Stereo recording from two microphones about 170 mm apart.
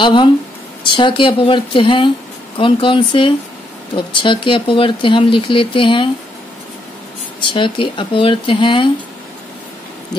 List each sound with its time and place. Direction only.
0.0 s speech: 30° left (ahead or behind)
7.5 s speech: 30° left (ahead or behind)